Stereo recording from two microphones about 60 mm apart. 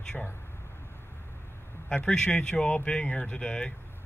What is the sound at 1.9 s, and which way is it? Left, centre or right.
Speech, centre.